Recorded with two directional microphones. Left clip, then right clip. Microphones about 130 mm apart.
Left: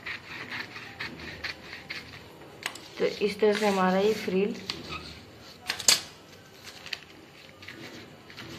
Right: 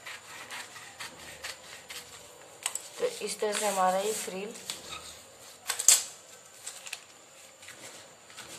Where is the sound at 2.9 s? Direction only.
25° right (ahead or behind).